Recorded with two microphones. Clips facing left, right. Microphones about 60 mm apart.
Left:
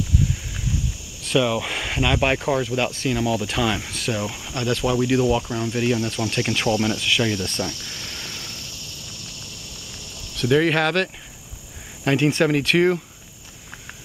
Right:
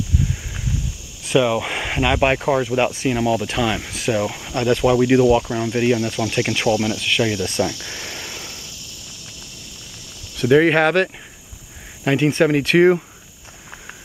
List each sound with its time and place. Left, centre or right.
1.2 s speech: centre
3.3 s speech: centre
4.1 s speech: right
7.0 s speech: centre
7.2 s speech: centre
7.7 s a sound: right
10.3 s speech: centre
12.0 s speech: centre